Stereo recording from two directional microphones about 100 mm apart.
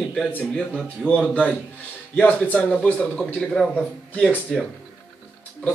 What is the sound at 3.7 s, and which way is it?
Speech, 15° left (ahead or behind).